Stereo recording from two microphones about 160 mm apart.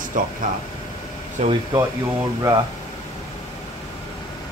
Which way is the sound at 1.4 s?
45° right (ahead or behind).